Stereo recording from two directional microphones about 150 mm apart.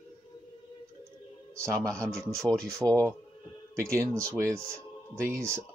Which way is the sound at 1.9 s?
5° left (ahead or behind).